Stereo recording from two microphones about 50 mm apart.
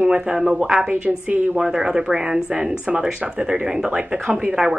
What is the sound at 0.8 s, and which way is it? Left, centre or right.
A woman's voice, right.